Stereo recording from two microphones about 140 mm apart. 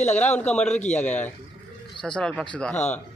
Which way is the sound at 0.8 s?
55° left (ahead or behind).